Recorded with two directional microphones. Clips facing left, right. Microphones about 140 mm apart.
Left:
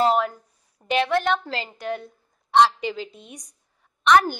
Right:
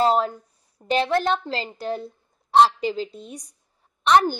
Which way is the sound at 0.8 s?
35° right (ahead or behind).